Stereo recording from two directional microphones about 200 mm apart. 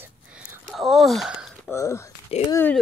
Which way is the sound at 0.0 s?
5° right (ahead or behind).